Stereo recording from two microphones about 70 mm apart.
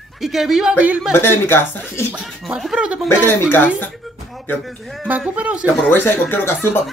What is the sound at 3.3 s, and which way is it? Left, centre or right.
Speech, left.